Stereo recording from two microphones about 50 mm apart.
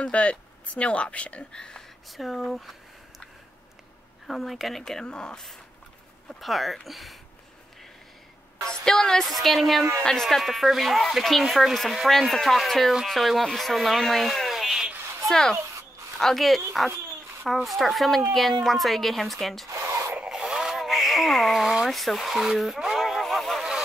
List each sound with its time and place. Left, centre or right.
0.0 s speech: left
2.0 s speech: centre
4.3 s speech: centre
6.4 s speech: centre
8.8 s speech: centre
15.2 s speech: centre
17.6 s speech: centre
19.9 s rub: right
20.2 s a sound: centre
21.9 s speech: centre
22.9 s a sound: centre